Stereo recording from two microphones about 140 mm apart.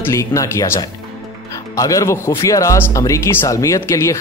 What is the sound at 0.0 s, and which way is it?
Speech, 20° left (ahead or behind).